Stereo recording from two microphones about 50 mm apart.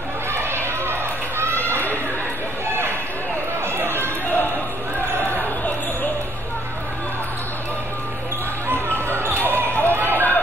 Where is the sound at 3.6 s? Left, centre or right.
Right.